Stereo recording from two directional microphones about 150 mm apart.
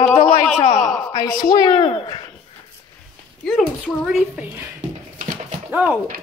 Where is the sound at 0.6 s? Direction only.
50° left (ahead or behind).